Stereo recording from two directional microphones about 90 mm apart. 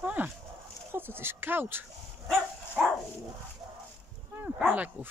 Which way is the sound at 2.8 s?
15° right (ahead or behind).